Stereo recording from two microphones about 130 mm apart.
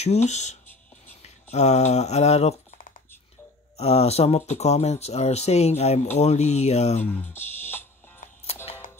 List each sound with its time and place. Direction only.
0.0 s speech: 60° left (ahead or behind)
7.0 s speech: 15° left (ahead or behind)